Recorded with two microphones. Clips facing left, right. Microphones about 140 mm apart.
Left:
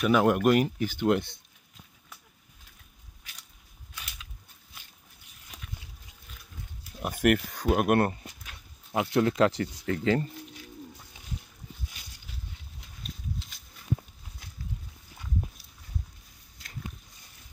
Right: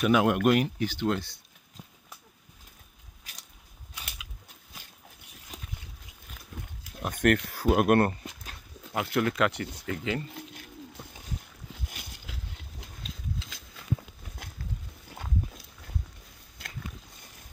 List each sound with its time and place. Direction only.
0.0 s speech: centre (ahead or behind)
0.5 s speech: 45° left (ahead or behind)
1.0 s speech: 20° left (ahead or behind)
7.0 s speech: 10° left (ahead or behind)
7.5 s speech: 5° right (ahead or behind)
8.9 s speech: 20° left (ahead or behind)
9.8 s speech: 40° left (ahead or behind)
10.3 s a sound: 60° right (ahead or behind); by 14.1 s 90° right
15.0 s a sound: 60° right (ahead or behind)